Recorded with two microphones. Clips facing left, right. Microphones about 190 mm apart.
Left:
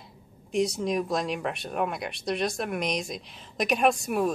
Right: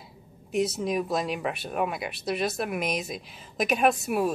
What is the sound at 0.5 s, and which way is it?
Speech, 5° right (ahead or behind).